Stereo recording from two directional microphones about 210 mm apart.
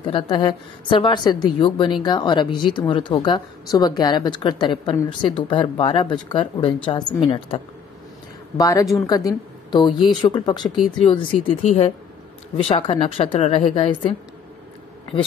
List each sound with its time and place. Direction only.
0.1 s a woman's voice: 20° left (ahead or behind)